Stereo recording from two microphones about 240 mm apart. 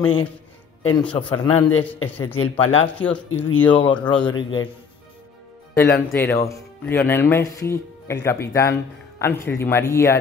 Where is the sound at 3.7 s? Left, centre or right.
Centre.